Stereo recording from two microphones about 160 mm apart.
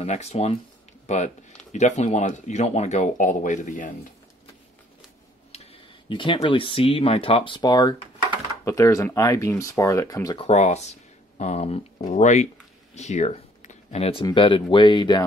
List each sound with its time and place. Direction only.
0.0 s speech: 45° left (ahead or behind)
5.5 s speech: 35° left (ahead or behind)
10.4 s speech: 45° left (ahead or behind)
12.9 s a sound: 45° left (ahead or behind)
14.2 s speech: 30° left (ahead or behind)